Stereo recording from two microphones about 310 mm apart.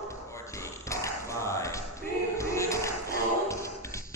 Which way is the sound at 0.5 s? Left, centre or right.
Centre.